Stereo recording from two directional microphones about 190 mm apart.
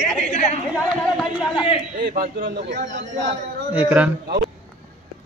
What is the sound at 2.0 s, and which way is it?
Speech, 50° right (ahead or behind).